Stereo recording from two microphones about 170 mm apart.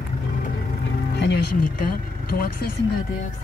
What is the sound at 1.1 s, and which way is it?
Vehicle, 80° left.